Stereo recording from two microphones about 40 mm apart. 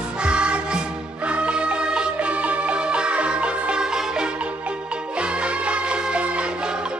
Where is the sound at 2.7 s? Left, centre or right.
Right.